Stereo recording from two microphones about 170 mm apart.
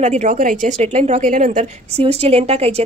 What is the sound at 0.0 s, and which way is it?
A woman's voice, 45° right (ahead or behind).